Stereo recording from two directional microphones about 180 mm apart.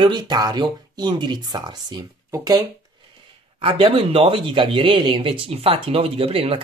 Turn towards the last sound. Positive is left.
turn(degrees=-30)  # may be behind; listen again after turning